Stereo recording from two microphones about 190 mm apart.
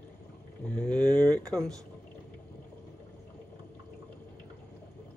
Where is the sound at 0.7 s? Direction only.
5° left (ahead or behind).